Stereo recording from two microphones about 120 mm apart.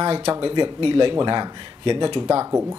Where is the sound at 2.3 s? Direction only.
20° right (ahead or behind).